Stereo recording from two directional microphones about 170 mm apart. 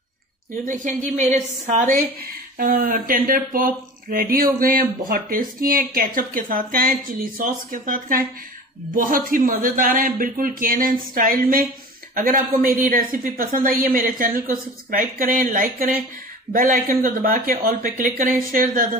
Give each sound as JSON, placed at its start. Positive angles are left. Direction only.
{"t": 0.7, "sound": "a woman's voice", "side_deg": -50}